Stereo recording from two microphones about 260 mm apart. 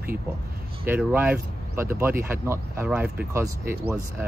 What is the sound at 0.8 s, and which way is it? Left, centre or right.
Speech, centre.